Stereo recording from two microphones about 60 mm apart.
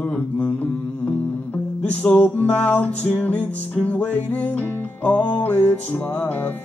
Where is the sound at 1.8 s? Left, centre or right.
Left.